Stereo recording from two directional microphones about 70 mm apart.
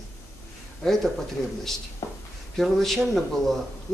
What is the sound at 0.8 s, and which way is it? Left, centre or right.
Speech, centre.